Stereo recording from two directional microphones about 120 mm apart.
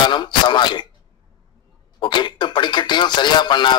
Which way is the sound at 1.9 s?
45° left (ahead or behind).